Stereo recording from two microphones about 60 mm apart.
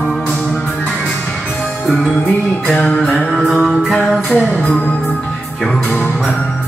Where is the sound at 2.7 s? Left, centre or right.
Centre.